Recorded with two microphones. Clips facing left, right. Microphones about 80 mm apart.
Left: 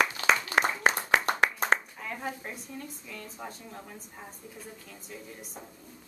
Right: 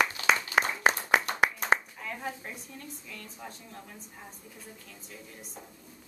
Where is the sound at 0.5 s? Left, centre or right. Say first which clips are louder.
Left 1 dB; left.